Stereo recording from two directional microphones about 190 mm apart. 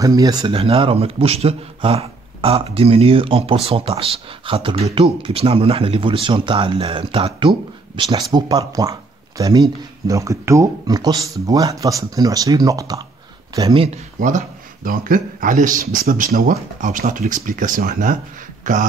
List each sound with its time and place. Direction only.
0.0 s a man's voice: 20° right (ahead or behind)
13.8 s speech: 40° right (ahead or behind)